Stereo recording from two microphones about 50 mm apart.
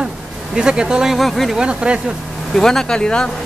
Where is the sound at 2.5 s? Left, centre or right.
Centre.